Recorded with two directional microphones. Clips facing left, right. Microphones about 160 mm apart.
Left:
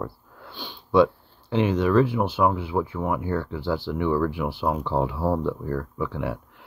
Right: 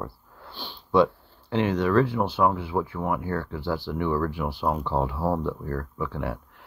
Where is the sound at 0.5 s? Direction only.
Centre (ahead or behind).